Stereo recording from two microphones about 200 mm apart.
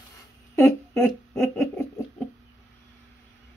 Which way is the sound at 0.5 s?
10° left (ahead or behind).